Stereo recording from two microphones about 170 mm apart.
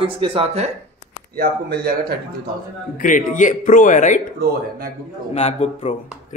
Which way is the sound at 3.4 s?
50° left (ahead or behind).